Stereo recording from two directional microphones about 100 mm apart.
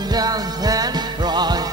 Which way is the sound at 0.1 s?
40° right (ahead or behind).